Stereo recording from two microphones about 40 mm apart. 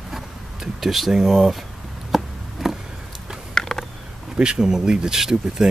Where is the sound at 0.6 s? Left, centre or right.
Centre.